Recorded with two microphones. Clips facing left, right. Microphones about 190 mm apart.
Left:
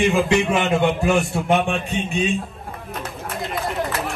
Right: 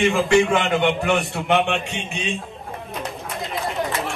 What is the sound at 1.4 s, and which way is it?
Speech, 35° left (ahead or behind).